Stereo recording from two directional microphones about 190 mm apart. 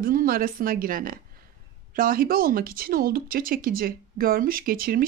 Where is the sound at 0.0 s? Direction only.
50° right (ahead or behind).